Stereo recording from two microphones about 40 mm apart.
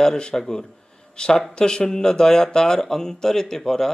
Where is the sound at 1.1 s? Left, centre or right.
Left.